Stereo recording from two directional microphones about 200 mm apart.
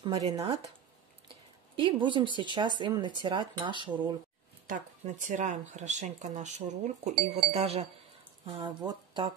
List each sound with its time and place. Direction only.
0.0 s speech: 25° right (ahead or behind)
1.8 s speech: 25° right (ahead or behind)
4.6 s speech: 40° right (ahead or behind); by 9.3 s 20° right (ahead or behind)